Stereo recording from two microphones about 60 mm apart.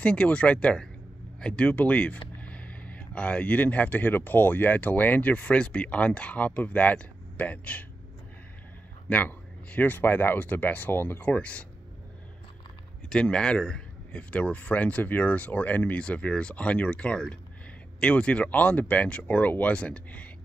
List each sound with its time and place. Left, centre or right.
0.0 s speech: centre
9.1 s speech: left
13.1 s speech: centre